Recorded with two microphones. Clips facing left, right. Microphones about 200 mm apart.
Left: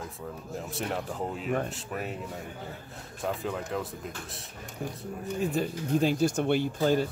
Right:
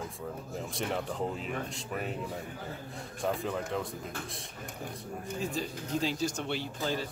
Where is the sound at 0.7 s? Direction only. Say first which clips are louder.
Even; 5° left (ahead or behind).